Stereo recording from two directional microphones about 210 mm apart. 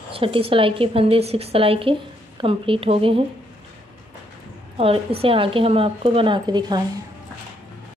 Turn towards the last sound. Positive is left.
turn(degrees=-20)  # may be behind; listen again after turning